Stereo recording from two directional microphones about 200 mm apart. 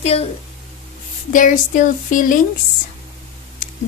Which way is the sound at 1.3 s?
40° left (ahead or behind).